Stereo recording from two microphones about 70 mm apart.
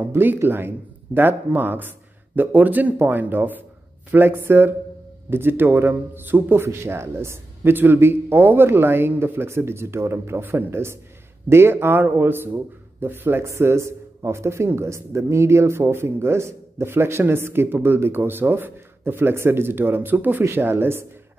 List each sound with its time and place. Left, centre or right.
0.0 s a man's voice: right